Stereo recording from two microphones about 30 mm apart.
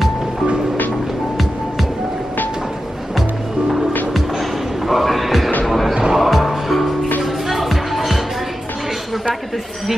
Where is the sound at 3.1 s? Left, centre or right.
Centre.